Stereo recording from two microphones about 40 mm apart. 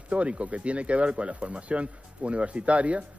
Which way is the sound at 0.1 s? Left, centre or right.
Right.